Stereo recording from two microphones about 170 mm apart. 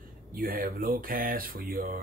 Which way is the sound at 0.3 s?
55° right (ahead or behind).